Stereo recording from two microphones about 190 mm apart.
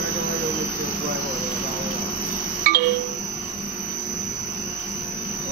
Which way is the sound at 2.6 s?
50° right (ahead or behind).